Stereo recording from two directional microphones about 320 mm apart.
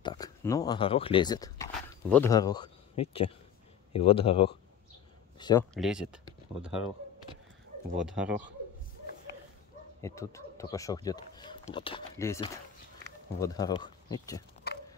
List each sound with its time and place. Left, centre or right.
0.0 s speech: centre
5.8 s speech: centre
8.1 s speech: centre
10.0 s speech: centre
14.7 s horse: left